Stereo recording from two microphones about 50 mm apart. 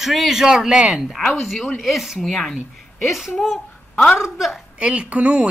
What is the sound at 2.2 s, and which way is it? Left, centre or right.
Speech, centre.